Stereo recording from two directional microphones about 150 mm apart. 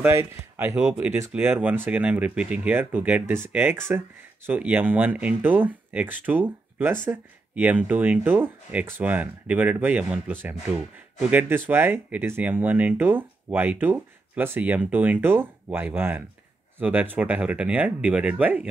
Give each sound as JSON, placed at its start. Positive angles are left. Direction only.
{"t": 0.0, "sound": "speech", "side_deg": -15}
{"t": 0.7, "sound": "speech", "side_deg": -5}